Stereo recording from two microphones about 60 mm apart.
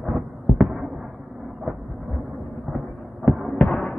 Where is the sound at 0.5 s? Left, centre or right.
Centre.